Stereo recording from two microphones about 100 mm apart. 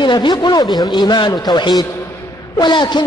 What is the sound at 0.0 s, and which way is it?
Speech, 50° left (ahead or behind).